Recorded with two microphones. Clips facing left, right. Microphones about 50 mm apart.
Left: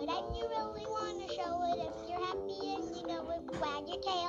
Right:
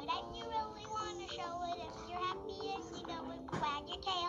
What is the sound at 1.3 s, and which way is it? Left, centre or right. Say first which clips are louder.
Music: left 10 dB; centre.